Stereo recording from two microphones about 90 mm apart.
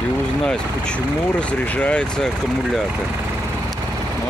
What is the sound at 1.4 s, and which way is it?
Speech, 15° left (ahead or behind).